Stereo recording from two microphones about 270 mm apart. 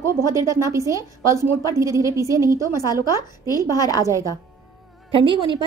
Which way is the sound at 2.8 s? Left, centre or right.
Centre.